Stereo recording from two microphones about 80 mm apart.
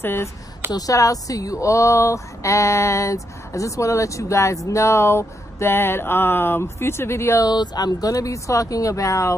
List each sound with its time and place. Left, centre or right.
0.0 s speech: left
0.7 s speech: left
7.4 s speech: left